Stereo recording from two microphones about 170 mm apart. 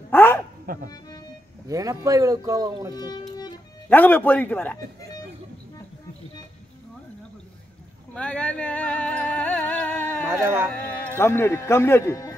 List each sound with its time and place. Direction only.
0.1 s bow-wow: 15° left (ahead or behind)
0.7 s speech: 55° right (ahead or behind)
1.7 s speech: 20° right (ahead or behind)
3.9 s a man's voice: 10° left (ahead or behind)
8.1 s music: 5° left (ahead or behind)
10.3 s speech: 15° right (ahead or behind)
10.7 s speech: 15° left (ahead or behind)